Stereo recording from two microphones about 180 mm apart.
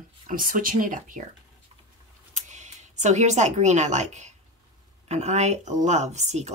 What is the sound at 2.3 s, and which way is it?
Speech, 40° right (ahead or behind).